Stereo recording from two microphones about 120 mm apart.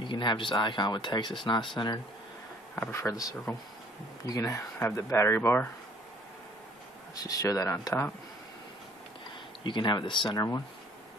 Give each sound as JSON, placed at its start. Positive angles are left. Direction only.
{"t": 0.0, "sound": "speech", "side_deg": 40}
{"t": 2.9, "sound": "speech", "side_deg": 25}
{"t": 7.2, "sound": "speech", "side_deg": 30}
{"t": 9.6, "sound": "speech", "side_deg": 40}